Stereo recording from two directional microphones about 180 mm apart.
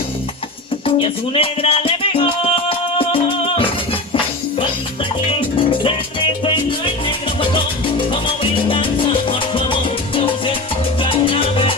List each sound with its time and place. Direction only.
0.8 s music: 30° left (ahead or behind)
5.6 s music: 30° left (ahead or behind)
11.0 s salsa music: 30° left (ahead or behind)